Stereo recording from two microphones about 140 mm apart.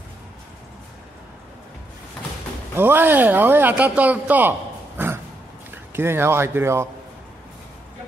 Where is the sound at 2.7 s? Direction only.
15° right (ahead or behind).